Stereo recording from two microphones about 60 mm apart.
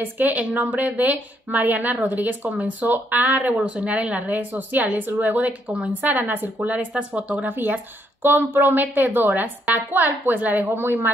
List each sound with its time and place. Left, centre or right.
0.0 s speech: right
7.4 s a woman's voice: right